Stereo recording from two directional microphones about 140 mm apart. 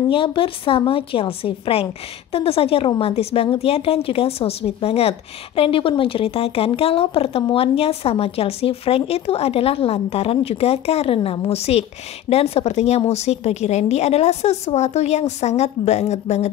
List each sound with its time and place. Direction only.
0.1 s a woman's voice: 40° left (ahead or behind)